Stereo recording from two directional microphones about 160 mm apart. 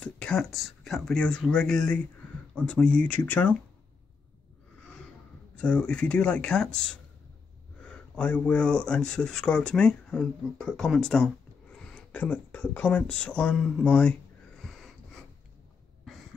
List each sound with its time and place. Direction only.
0.0 s speech: 5° left (ahead or behind)
5.6 s speech: 5° left (ahead or behind)
14.6 s wheeze: centre (ahead or behind)